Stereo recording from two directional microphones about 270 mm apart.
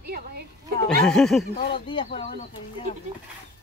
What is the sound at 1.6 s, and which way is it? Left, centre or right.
Speech, left.